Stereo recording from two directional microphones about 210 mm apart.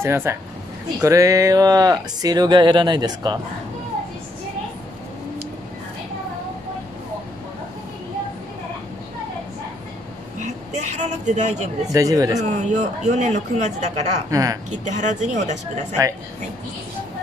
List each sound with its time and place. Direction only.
0.0 s speech: 10° right (ahead or behind)
10.4 s a sound: 35° right (ahead or behind)
11.9 s speech: 15° right (ahead or behind)
12.4 s speech: 35° right (ahead or behind)
14.3 s speech: 15° right (ahead or behind)
14.9 s speech: 35° right (ahead or behind)